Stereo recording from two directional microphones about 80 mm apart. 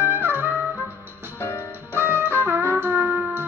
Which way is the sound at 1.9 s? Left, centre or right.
Right.